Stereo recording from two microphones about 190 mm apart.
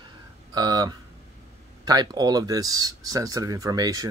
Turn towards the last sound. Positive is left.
turn(degrees=-20)  # may be behind; listen again after turning